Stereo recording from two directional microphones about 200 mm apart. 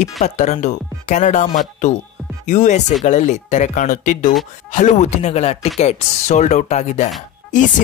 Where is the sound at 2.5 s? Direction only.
35° left (ahead or behind).